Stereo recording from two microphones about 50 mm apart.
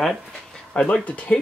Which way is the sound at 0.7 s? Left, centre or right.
Left.